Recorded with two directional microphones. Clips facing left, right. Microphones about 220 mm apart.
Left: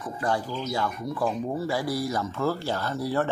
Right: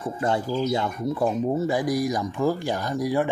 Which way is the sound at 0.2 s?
25° right (ahead or behind).